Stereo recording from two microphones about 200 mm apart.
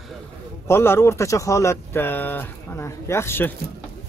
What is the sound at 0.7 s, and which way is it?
Speech, 10° left (ahead or behind).